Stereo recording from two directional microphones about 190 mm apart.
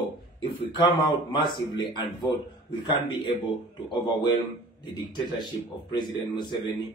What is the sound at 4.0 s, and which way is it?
Speech, 25° left (ahead or behind).